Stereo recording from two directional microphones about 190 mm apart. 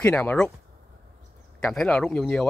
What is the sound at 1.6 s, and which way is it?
Speech, 5° left (ahead or behind).